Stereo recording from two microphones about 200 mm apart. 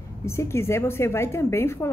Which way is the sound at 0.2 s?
15° left (ahead or behind).